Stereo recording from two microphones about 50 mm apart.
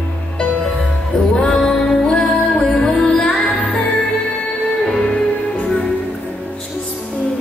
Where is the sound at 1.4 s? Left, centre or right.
Centre.